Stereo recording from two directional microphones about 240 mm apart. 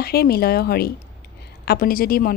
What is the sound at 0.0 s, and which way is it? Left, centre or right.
Speech, left.